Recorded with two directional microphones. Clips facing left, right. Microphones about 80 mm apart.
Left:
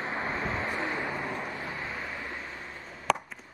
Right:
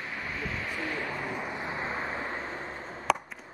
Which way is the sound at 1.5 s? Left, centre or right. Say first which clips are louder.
Right 3 dB; right.